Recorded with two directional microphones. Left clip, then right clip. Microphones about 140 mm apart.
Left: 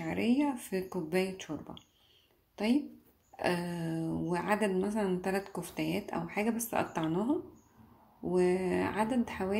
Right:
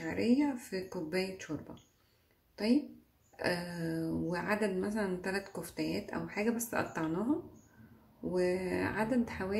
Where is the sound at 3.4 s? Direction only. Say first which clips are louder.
Left 2 dB; 15° left (ahead or behind).